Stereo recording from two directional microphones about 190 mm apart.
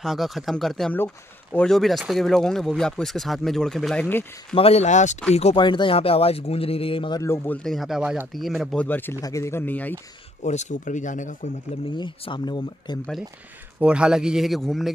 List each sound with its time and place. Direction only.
0.0 s speech: centre (ahead or behind)
4.6 s speech: 30° left (ahead or behind); by 9.9 s 10° left (ahead or behind)
10.4 s speech: 40° left (ahead or behind)
11.9 s speech: 25° left (ahead or behind)
13.7 s speech: 5° right (ahead or behind)